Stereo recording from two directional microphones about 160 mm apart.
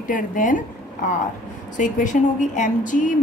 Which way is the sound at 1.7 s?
55° left (ahead or behind).